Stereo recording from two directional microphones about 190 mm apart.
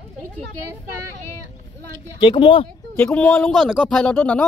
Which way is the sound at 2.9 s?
5° left (ahead or behind).